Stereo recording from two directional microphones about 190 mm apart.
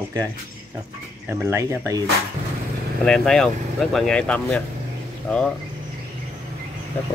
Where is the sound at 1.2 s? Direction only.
15° right (ahead or behind).